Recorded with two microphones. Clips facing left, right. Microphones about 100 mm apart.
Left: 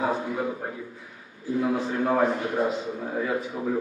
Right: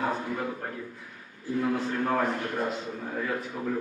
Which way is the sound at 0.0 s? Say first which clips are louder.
Left 3 dB; 5° left (ahead or behind).